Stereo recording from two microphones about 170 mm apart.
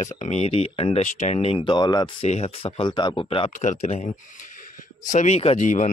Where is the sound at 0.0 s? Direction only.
45° left (ahead or behind); by 2.2 s 25° left (ahead or behind).